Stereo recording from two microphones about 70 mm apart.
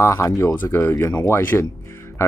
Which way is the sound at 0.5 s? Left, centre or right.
Left.